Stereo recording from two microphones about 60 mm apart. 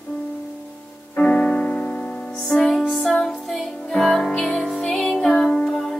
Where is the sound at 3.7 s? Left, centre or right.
Centre.